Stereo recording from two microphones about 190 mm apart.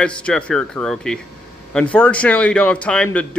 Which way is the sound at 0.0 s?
5° left (ahead or behind).